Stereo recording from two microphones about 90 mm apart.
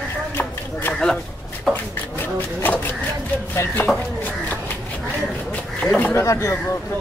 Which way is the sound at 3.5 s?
20° left (ahead or behind).